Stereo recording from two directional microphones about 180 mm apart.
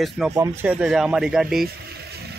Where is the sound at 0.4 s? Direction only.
10° right (ahead or behind).